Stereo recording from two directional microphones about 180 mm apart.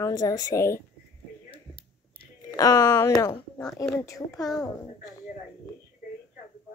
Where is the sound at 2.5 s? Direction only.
20° left (ahead or behind).